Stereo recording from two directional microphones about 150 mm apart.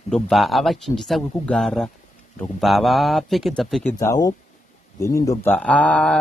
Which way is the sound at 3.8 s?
20° left (ahead or behind).